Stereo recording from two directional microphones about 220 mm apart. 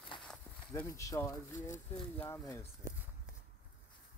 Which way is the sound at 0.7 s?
15° left (ahead or behind).